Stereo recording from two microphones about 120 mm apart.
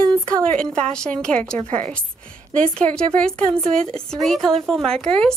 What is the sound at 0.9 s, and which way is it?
Speech, 5° left (ahead or behind).